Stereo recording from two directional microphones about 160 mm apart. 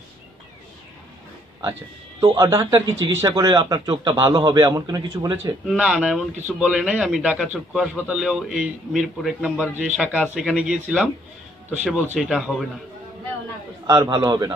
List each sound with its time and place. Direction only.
1.6 s speech: 15° right (ahead or behind)
5.7 s a man's voice: 5° right (ahead or behind)
13.8 s speech: 20° right (ahead or behind)